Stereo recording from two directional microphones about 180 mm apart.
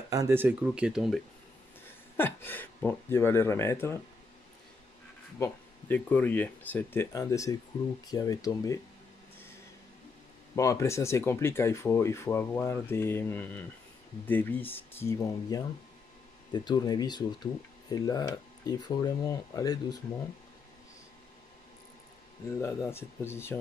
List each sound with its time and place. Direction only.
0.1 s speech: 15° right (ahead or behind)
1.9 s speech: 10° left (ahead or behind)
5.4 s speech: 10° left (ahead or behind)
10.5 s speech: 15° left (ahead or behind)
22.6 s speech: 15° left (ahead or behind)